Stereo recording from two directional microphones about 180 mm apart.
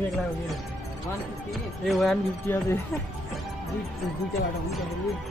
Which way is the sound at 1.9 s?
Centre (ahead or behind).